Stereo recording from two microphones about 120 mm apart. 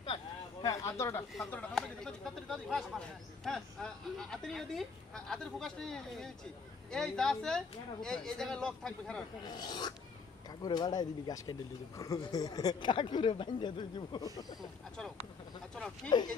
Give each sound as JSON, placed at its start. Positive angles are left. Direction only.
{"t": 0.0, "sound": "speech", "side_deg": 45}
{"t": 0.7, "sound": "speech", "side_deg": 25}
{"t": 1.5, "sound": "speech", "side_deg": 10}
{"t": 9.4, "sound": "speech", "side_deg": 35}
{"t": 16.1, "sound": "speech", "side_deg": 40}